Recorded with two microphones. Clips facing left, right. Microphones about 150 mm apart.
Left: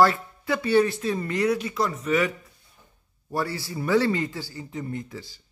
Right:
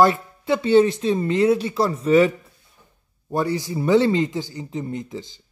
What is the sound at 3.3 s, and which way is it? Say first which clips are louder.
Speech: right 6 dB; 20° right (ahead or behind).